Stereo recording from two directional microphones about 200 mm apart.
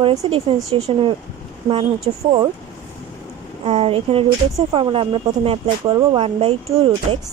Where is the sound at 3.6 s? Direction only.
30° right (ahead or behind).